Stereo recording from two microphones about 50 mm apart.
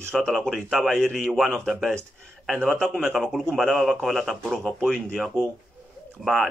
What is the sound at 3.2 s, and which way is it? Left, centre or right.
Speech, centre.